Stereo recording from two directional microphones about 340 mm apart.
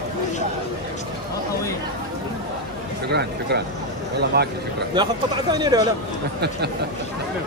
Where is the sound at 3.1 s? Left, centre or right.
Right.